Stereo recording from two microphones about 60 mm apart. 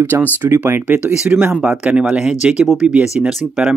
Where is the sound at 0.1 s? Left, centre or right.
Right.